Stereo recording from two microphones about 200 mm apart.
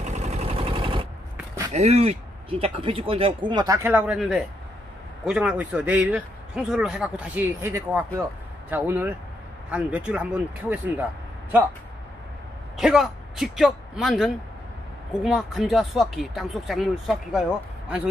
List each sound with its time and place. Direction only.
0.0 s vehicle: 35° right (ahead or behind)
1.7 s a man's voice: 35° right (ahead or behind); by 11.1 s 10° right (ahead or behind)
12.7 s a man's voice: centre (ahead or behind)